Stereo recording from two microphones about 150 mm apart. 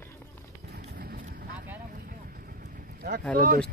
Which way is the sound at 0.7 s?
85° right.